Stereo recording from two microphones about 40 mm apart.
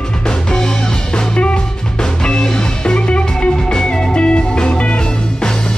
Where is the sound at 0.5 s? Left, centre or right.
Centre.